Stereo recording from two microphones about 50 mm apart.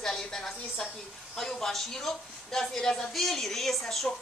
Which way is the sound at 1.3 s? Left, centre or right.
Centre.